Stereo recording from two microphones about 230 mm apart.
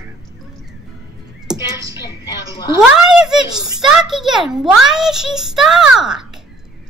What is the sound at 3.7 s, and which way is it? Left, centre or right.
A child's voice, centre.